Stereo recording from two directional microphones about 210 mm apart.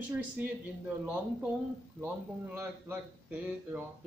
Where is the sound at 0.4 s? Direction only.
5° right (ahead or behind).